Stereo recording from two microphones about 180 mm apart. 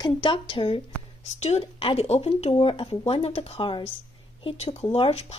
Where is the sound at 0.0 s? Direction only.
25° left (ahead or behind).